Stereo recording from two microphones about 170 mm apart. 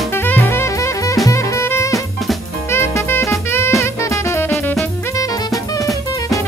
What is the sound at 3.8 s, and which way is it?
Drum kit, 15° left (ahead or behind).